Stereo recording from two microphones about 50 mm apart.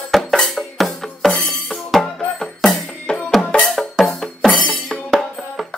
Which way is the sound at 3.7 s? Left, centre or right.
Centre.